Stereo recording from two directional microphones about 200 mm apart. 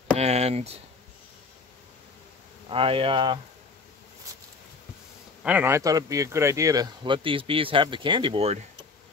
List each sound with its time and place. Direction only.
0.2 s speech: 35° right (ahead or behind)
2.7 s speech: 25° right (ahead or behind)
5.4 s speech: 10° right (ahead or behind); by 8.5 s 30° right (ahead or behind)